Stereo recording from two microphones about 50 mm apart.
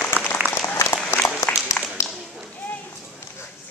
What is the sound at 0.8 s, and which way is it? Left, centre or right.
Applause, left.